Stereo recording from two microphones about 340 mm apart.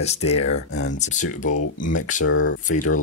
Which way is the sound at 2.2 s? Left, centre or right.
Left.